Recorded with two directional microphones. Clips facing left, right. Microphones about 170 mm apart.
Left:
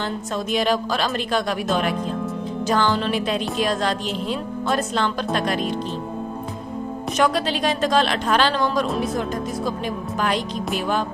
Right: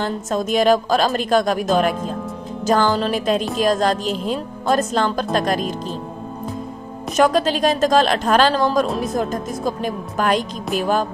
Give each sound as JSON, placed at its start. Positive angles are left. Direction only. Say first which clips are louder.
{"t": 0.0, "sound": "a woman's voice", "louder": "right 4 dB", "side_deg": -45}
{"t": 7.2, "sound": "a woman's voice", "louder": "right 5 dB", "side_deg": -45}